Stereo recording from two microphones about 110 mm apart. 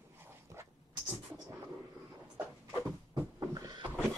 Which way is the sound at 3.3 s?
35° right (ahead or behind).